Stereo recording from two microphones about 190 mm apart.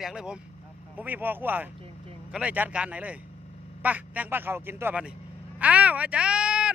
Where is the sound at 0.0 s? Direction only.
5° right (ahead or behind).